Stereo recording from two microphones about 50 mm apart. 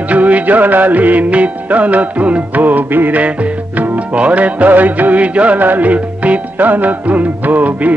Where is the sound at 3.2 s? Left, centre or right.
Right.